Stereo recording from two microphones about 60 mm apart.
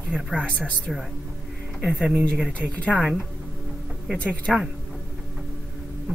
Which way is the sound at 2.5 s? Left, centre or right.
Left.